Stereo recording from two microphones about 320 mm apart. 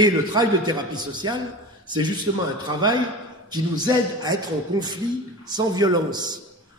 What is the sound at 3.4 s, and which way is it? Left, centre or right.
Speech, centre.